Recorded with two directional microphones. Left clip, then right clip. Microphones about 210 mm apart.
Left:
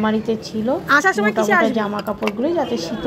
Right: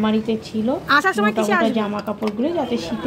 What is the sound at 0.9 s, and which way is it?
Speech, centre (ahead or behind).